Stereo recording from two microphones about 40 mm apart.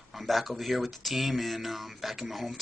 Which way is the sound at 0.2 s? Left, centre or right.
Centre.